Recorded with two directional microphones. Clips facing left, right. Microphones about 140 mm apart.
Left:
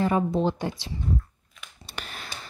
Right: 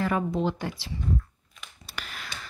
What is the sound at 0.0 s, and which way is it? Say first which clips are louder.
Speech: left 3 dB; 25° left (ahead or behind).